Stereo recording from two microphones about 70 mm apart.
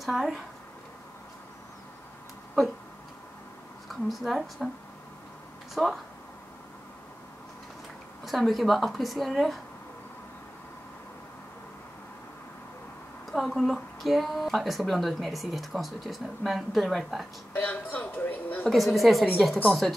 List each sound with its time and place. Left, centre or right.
0.0 s speech: centre
3.9 s speech: centre
5.8 s speech: centre
8.3 s speech: centre
13.3 s speech: centre
17.6 s a sound: left
18.7 s speech: centre